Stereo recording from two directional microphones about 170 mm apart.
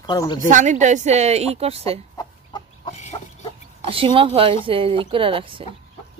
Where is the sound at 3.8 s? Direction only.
30° right (ahead or behind).